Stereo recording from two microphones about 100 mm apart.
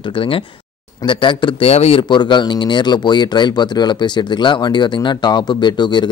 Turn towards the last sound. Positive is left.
turn(degrees=50)  # may be behind; listen again after turning